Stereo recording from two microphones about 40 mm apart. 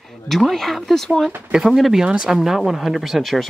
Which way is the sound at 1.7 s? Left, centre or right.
Centre.